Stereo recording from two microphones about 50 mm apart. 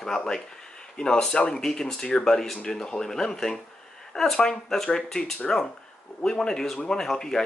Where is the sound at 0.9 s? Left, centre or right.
Centre.